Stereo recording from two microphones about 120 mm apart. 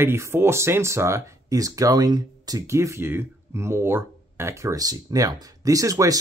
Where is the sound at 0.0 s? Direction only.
20° right (ahead or behind).